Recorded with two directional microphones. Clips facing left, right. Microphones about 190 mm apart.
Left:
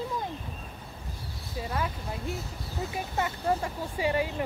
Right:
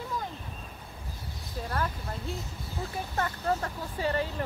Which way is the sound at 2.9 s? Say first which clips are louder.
Left 1 dB; 10° left (ahead or behind).